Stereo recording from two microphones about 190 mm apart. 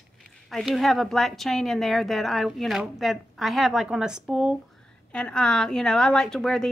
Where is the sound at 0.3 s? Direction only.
Centre (ahead or behind).